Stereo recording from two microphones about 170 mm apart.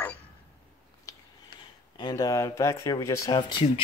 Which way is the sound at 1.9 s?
25° left (ahead or behind).